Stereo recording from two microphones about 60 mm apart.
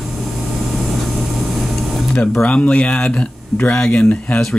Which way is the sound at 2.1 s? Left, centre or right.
Centre.